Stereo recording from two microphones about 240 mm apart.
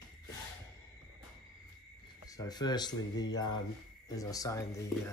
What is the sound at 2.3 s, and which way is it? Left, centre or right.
Speech, centre.